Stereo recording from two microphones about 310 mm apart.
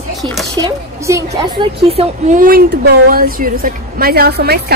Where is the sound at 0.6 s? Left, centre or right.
Centre.